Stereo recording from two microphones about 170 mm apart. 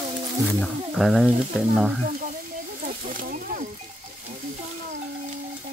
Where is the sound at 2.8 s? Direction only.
50° right (ahead or behind).